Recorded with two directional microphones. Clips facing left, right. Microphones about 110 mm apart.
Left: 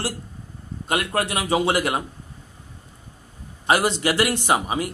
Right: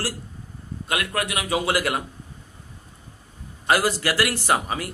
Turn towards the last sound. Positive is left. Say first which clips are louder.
# left 2 dB
turn(degrees=20)  # may be behind; listen again after turning